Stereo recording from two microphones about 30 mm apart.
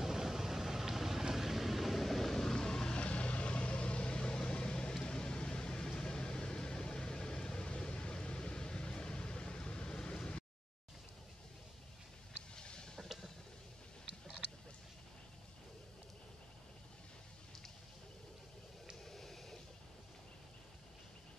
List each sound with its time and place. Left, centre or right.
0.0 s vehicle: centre
2.9 s vehicle: left
12.5 s a sound: left
19.0 s vehicle: centre